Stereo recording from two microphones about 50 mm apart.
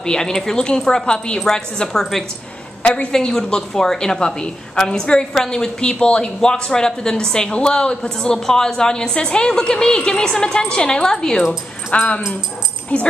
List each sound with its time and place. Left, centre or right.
0.0 s speech: centre
2.8 s speech: centre
11.9 s speech: left